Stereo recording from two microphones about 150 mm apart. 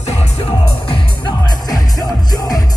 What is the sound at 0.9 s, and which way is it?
Music, 30° left (ahead or behind).